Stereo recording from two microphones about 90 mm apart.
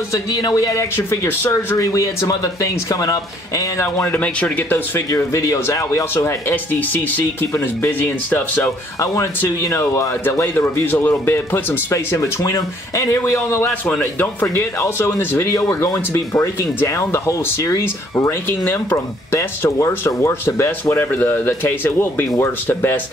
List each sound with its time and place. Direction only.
0.1 s speech: 50° left (ahead or behind)
1.1 s speech: 25° left (ahead or behind)
1.8 s speech: 40° left (ahead or behind)
4.0 s speech: 15° left (ahead or behind)
5.1 s speech: 35° left (ahead or behind); by 8.6 s 20° left (ahead or behind)
9.0 s speech: 35° left (ahead or behind)
18.5 s speech: 20° left (ahead or behind)